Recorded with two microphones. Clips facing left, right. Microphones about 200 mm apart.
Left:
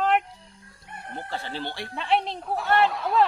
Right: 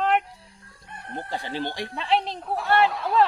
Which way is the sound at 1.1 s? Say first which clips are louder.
Right 3 dB; 15° right (ahead or behind).